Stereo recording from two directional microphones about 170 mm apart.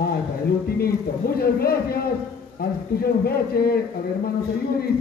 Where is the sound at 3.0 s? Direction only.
65° left (ahead or behind).